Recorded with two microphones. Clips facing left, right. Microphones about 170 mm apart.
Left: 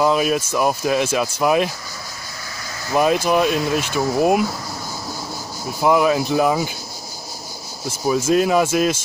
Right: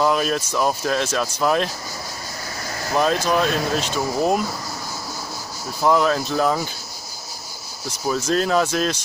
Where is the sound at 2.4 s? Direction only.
40° right (ahead or behind).